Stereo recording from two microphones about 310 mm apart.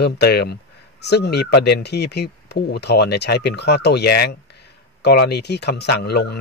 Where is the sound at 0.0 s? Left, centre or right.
Left.